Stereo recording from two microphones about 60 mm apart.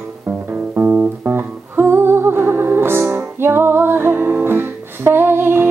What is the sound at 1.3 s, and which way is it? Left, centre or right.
Music, right.